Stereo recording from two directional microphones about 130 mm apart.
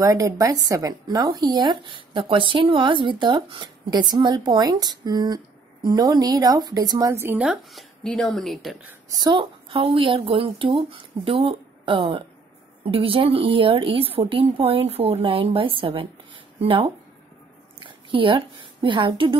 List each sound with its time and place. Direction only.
0.0 s a woman's voice: 30° right (ahead or behind); by 7.8 s 10° right (ahead or behind)
8.0 s speech: 5° left (ahead or behind)
9.2 s a woman's voice: 35° right (ahead or behind)